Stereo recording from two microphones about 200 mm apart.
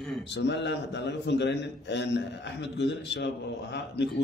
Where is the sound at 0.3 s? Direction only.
60° left (ahead or behind).